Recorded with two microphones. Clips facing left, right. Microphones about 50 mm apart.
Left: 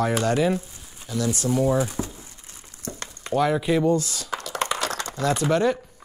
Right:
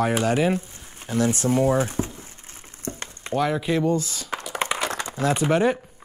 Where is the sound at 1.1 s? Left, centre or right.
Right.